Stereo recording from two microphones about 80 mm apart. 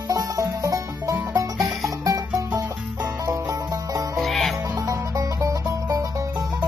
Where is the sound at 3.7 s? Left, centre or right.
Right.